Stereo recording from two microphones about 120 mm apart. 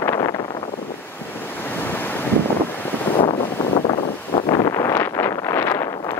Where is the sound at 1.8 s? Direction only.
15° left (ahead or behind).